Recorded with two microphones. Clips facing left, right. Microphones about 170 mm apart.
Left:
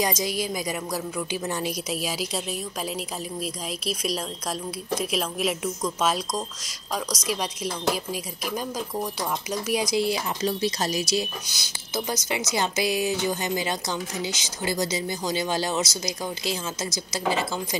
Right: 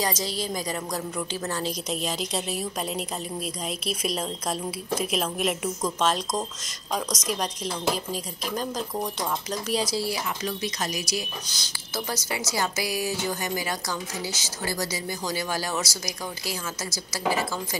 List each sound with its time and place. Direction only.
0.0 s a woman's voice: 15° left (ahead or behind)
3.8 s a woman's voice: centre (ahead or behind); by 11.2 s 25° left (ahead or behind)
11.4 s speech: 10° left (ahead or behind)